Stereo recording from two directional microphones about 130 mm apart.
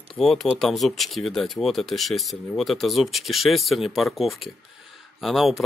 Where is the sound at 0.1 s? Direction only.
Centre (ahead or behind).